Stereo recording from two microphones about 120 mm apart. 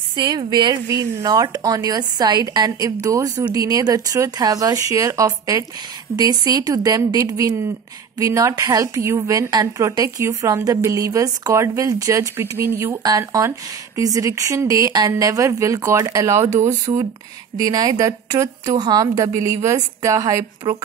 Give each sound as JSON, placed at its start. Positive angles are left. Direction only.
{"t": 0.1, "sound": "a woman's voice", "side_deg": -35}
{"t": 16.9, "sound": "speech", "side_deg": -55}
{"t": 17.6, "sound": "a woman's voice", "side_deg": -30}